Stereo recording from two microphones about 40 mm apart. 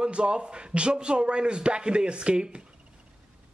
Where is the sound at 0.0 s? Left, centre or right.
Right.